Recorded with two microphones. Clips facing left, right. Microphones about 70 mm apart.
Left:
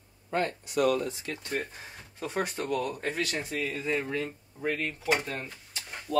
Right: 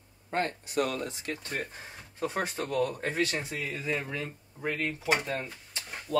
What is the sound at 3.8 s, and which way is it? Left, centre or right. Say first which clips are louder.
Speech: left 2 dB; centre.